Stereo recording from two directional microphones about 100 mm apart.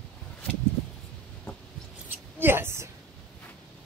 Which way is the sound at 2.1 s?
20° right (ahead or behind).